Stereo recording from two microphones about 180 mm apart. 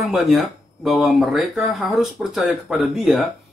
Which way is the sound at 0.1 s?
Centre (ahead or behind).